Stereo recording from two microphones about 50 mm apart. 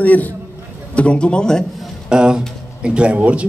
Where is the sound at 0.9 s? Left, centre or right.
Left.